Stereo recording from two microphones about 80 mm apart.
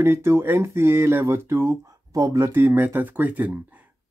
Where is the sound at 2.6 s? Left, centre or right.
Right.